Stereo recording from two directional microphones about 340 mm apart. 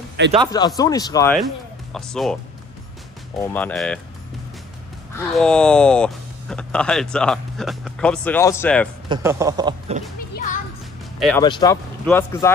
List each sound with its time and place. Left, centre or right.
0.2 s speech: right
0.7 s speech: centre
3.3 s speech: centre
5.3 s speech: centre
9.1 s speech: centre
10.3 s music: left
11.1 s speech: centre
11.4 s speech: centre